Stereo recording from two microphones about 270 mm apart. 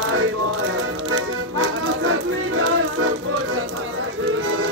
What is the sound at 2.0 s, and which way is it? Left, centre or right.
Music, right.